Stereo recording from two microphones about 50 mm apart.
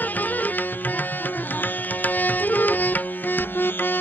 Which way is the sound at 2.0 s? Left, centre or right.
Left.